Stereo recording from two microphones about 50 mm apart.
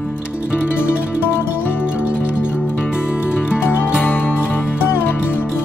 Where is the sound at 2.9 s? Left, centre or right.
Centre.